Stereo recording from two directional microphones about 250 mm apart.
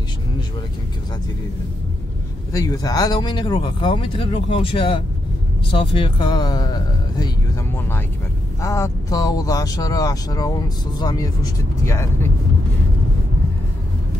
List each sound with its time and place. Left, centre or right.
2.5 s speech: centre